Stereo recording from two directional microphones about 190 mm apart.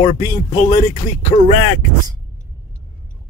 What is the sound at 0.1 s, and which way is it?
Speech, 20° left (ahead or behind).